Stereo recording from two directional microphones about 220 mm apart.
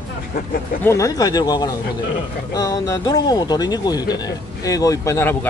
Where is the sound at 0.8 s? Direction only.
15° left (ahead or behind).